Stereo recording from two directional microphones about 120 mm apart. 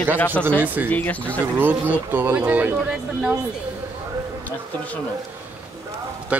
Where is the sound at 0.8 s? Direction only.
10° left (ahead or behind).